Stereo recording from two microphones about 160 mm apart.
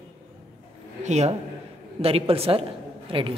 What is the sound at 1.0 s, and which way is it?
A man's voice, 45° right (ahead or behind).